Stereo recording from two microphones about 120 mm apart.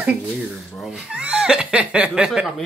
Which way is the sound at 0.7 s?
Centre (ahead or behind).